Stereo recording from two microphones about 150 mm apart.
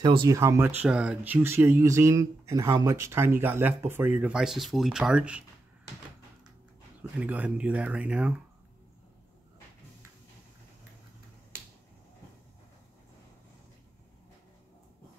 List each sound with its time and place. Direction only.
0.0 s speech: 30° right (ahead or behind)
0.4 s speech: 15° right (ahead or behind)
7.0 s speech: 10° right (ahead or behind)